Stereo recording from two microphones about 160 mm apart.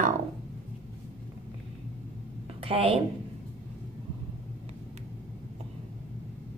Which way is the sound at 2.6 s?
35° right (ahead or behind).